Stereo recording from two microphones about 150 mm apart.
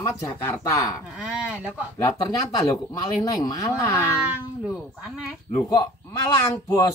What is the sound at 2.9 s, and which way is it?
Speech, 25° left (ahead or behind).